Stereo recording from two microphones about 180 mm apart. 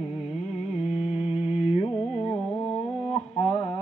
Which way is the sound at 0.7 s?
35° left (ahead or behind).